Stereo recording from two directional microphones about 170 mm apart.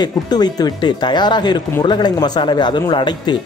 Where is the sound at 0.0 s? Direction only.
25° left (ahead or behind).